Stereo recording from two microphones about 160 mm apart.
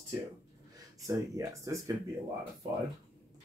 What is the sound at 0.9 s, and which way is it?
Speech, 20° right (ahead or behind).